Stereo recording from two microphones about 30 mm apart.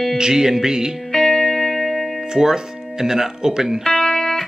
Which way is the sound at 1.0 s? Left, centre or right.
Centre.